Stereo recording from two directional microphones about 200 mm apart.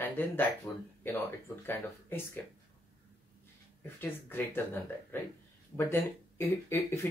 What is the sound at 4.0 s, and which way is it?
Speech, 10° left (ahead or behind).